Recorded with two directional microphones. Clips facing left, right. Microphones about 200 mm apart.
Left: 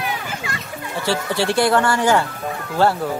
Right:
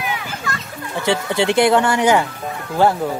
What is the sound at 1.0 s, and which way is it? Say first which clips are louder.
Speech: right 3 dB; 20° right (ahead or behind).